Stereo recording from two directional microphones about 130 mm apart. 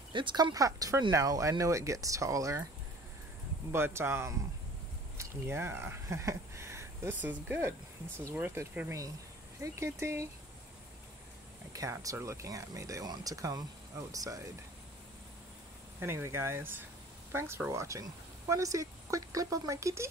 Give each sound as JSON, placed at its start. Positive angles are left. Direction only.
{"t": 0.1, "sound": "speech", "side_deg": -40}
{"t": 3.7, "sound": "speech", "side_deg": -20}
{"t": 11.7, "sound": "speech", "side_deg": -25}
{"t": 16.0, "sound": "speech", "side_deg": -20}